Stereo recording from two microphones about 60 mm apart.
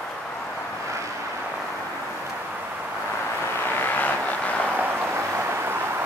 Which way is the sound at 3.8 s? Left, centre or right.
Left.